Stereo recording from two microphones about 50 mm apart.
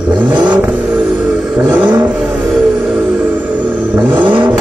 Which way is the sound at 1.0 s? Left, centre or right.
Centre.